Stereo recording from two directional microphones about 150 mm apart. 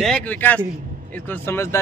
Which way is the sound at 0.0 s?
10° left (ahead or behind).